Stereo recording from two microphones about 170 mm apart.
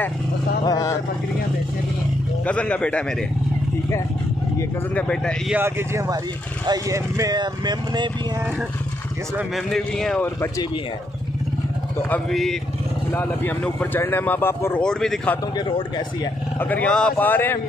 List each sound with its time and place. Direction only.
0.7 s speech: 20° left (ahead or behind)
2.4 s speech: 5° left (ahead or behind)
4.6 s speech: 10° left (ahead or behind)
5.5 s speech: 15° right (ahead or behind)
9.7 s speech: centre (ahead or behind)
12.1 s speech: centre (ahead or behind)
16.5 s speech: 10° left (ahead or behind)